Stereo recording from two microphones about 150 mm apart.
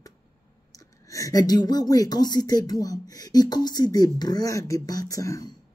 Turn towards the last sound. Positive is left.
turn(degrees=20)  # may be behind; listen again after turning